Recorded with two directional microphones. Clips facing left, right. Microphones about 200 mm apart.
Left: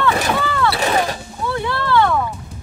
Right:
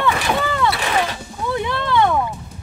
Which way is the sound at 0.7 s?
40° left (ahead or behind).